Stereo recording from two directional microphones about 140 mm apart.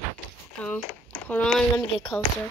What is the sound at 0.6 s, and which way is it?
Speech, 10° left (ahead or behind).